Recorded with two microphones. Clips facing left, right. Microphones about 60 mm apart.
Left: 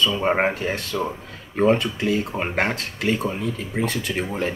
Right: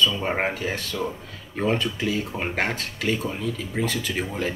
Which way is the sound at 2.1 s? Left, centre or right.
Left.